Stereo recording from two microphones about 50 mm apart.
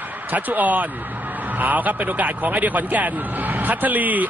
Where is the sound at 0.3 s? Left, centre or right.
Right.